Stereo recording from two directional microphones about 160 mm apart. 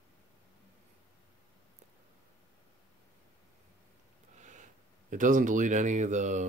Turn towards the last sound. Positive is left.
turn(degrees=-50)  # may be behind; listen again after turning